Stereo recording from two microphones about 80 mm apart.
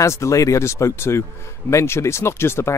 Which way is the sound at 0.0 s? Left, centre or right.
Left.